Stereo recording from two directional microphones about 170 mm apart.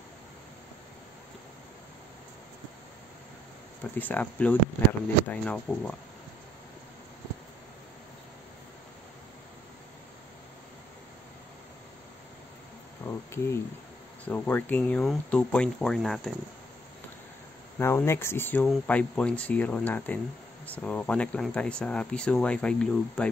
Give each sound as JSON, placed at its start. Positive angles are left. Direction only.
{"t": 4.0, "sound": "speech", "side_deg": 10}
{"t": 13.0, "sound": "cricket", "side_deg": 15}
{"t": 14.2, "sound": "speech", "side_deg": 10}
{"t": 17.7, "sound": "speech", "side_deg": 15}